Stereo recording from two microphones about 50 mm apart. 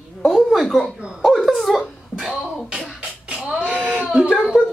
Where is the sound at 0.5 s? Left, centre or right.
Centre.